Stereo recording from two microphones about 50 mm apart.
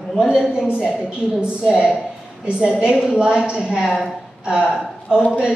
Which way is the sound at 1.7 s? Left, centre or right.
Centre.